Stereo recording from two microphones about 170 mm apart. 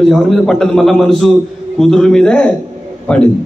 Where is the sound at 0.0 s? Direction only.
Centre (ahead or behind).